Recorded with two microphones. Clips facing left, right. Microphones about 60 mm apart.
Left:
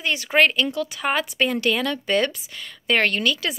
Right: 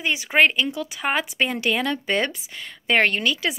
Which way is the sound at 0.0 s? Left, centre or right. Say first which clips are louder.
Even; centre.